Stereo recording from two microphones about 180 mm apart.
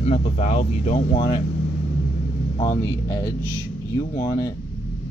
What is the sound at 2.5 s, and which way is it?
Speech, 20° left (ahead or behind).